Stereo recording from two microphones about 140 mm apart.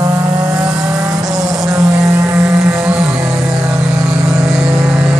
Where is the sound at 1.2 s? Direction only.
25° right (ahead or behind).